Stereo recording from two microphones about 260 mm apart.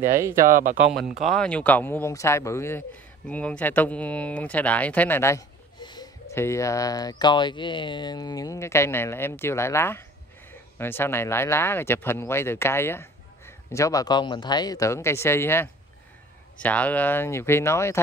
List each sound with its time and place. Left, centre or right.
0.0 s speech: centre
0.5 s speech: right
0.7 s speech: centre